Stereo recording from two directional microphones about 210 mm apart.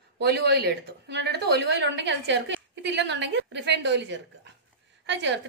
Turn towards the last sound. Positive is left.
turn(degrees=-55)  # may be behind; listen again after turning